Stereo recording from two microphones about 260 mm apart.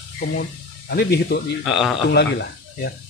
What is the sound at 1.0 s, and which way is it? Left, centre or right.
Speech, left.